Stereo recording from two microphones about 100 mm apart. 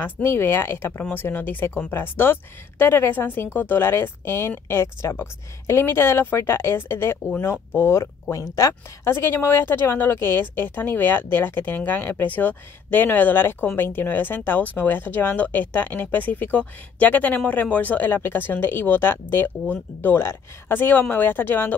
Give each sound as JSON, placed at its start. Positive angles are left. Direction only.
{"t": 0.0, "sound": "speech", "side_deg": 25}